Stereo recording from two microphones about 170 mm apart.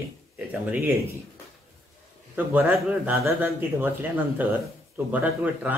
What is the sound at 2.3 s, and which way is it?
Speech, 10° right (ahead or behind).